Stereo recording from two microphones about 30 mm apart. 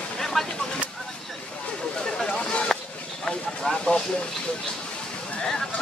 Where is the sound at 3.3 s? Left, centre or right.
Left.